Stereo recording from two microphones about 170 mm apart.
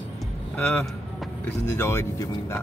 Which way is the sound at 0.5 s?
10° left (ahead or behind).